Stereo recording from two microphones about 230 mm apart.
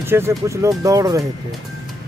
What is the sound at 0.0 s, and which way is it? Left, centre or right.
Speech, centre.